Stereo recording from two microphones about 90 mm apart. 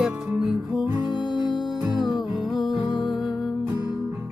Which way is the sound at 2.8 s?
55° left (ahead or behind).